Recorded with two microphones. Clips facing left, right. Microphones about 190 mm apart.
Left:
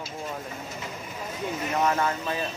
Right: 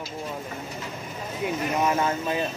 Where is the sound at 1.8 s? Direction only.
20° right (ahead or behind).